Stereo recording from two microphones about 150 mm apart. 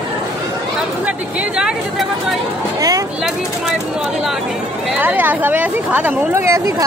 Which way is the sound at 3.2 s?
5° right (ahead or behind).